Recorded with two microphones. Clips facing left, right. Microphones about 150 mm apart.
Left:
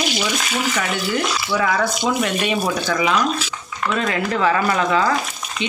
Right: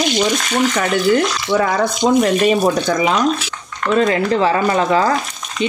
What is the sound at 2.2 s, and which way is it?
Speech, 40° right (ahead or behind).